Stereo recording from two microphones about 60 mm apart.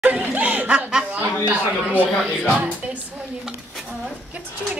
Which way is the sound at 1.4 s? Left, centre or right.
Right.